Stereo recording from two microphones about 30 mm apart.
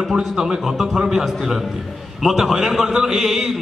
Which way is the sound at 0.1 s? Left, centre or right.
Centre.